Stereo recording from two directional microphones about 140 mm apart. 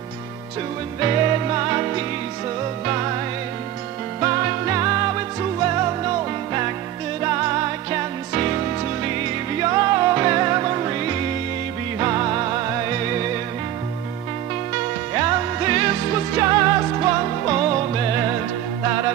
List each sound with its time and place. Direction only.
1.0 s music: 30° right (ahead or behind)
4.2 s music: 30° right (ahead or behind)
15.1 s music: 30° right (ahead or behind)